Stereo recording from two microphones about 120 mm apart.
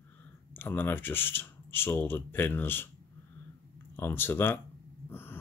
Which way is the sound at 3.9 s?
20° left (ahead or behind).